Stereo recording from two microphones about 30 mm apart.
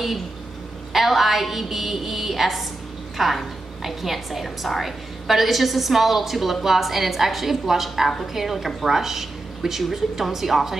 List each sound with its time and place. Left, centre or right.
0.9 s a woman's voice: centre